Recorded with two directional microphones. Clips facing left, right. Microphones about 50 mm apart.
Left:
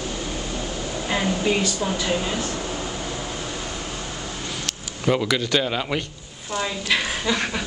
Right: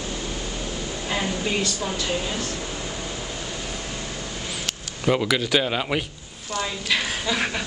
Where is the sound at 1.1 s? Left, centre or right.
Centre.